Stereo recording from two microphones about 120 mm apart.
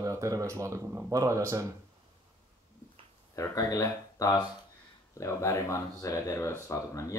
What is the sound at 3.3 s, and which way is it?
Speech, 25° left (ahead or behind).